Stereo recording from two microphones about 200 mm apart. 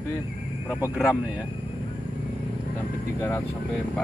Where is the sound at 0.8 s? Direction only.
5° right (ahead or behind).